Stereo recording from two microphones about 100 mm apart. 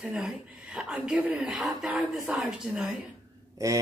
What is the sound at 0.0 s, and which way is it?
Speech, 5° right (ahead or behind).